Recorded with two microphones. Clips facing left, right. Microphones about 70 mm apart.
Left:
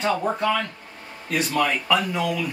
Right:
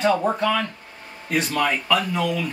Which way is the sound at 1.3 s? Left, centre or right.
Centre.